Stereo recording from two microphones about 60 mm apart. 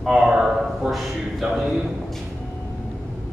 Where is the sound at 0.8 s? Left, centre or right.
Centre.